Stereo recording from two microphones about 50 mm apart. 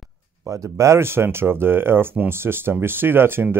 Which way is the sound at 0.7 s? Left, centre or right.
Right.